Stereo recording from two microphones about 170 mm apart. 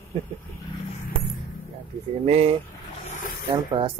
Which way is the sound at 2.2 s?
35° right (ahead or behind).